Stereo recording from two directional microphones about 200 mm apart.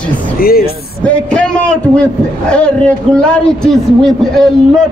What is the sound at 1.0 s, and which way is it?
A man's voice, 5° left (ahead or behind).